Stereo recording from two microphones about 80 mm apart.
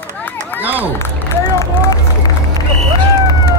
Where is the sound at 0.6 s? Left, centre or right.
Right.